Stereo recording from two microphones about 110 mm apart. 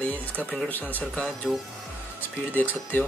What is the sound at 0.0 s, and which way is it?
Speech, 15° left (ahead or behind).